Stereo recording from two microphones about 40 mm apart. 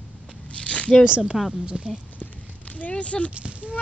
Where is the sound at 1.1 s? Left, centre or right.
Right.